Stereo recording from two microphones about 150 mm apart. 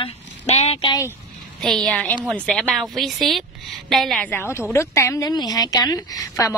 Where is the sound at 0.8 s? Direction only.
25° left (ahead or behind).